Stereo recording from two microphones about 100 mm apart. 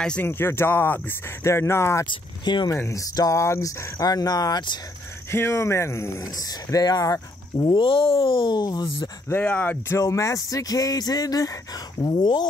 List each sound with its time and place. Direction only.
0.0 s speech: 10° left (ahead or behind)
0.3 s speech: 25° left (ahead or behind)
2.0 s speech: 50° left (ahead or behind)
2.7 s speech: 30° left (ahead or behind)
5.3 s speech: 25° left (ahead or behind); by 9.1 s 45° left (ahead or behind)
9.3 s speech: 15° left (ahead or behind)
9.8 s speech: 30° left (ahead or behind); by 12.4 s 45° left (ahead or behind)